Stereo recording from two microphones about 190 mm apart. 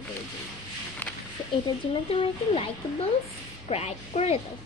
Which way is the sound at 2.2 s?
30° left (ahead or behind).